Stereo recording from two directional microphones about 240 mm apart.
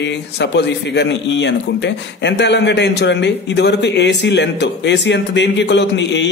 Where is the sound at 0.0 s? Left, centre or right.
Left.